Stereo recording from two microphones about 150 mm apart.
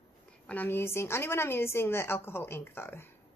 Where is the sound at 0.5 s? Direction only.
15° left (ahead or behind).